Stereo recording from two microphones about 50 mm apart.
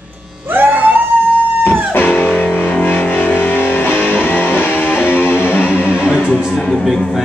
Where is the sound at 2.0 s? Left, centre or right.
Left.